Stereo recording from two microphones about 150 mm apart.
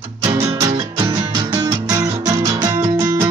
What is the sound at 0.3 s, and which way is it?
Music, 25° right (ahead or behind).